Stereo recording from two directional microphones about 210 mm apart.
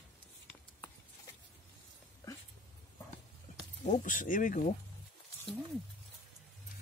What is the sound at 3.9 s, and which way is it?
Speech, 35° left (ahead or behind).